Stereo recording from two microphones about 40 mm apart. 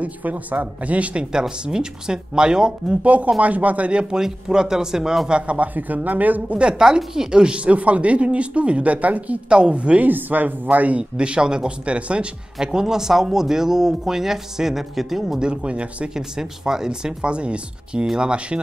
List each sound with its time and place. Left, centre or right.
0.0 s speech: right
1.6 s speech: centre
3.0 s speech: right; by 5.3 s centre
5.3 s speech: right
5.8 s speech: right
6.6 s speech: centre
7.6 s speech: right
9.5 s speech: right
10.0 s speech: right
11.1 s speech: right
12.5 s speech: centre
15.3 s speech: right
16.2 s speech: centre
17.2 s speech: right